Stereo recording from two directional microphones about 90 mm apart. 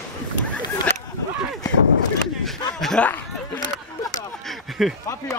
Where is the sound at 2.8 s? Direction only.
5° left (ahead or behind).